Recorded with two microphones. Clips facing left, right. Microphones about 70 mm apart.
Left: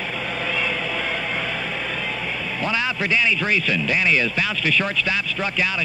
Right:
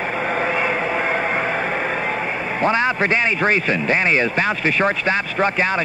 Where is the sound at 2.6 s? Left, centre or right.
Right.